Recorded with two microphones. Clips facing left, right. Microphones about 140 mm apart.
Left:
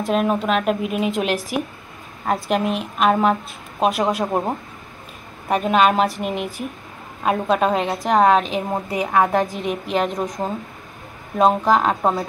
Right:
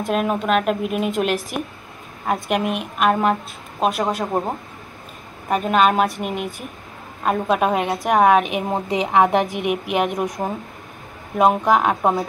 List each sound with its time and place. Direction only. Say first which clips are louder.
0.0 s speech: left 1 dB; centre (ahead or behind)
8.4 s a woman's voice: right 1 dB; 15° right (ahead or behind)
11.3 s speech: even; 5° right (ahead or behind)